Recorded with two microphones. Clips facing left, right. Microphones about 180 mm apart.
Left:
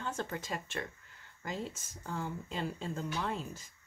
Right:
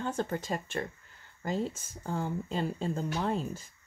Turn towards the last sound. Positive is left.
turn(degrees=-35)  # may be behind; listen again after turning